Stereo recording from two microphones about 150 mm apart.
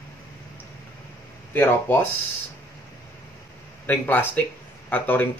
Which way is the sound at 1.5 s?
15° left (ahead or behind).